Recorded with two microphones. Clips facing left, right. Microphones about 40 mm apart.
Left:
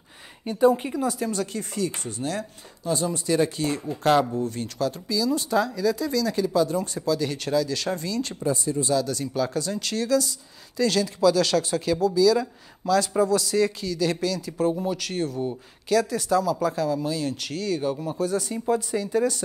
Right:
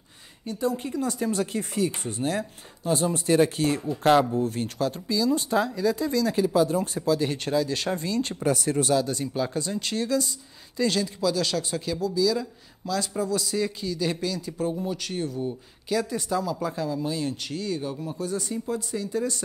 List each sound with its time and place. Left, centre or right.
0.5 s a woman's voice: left
1.3 s speech: right
4.1 s speech: centre
4.4 s speech: right
8.5 s speech: right
8.9 s speech: right; by 14.7 s centre
14.7 s speech: centre
15.0 s speech: centre
17.7 s speech: centre
18.1 s speech: centre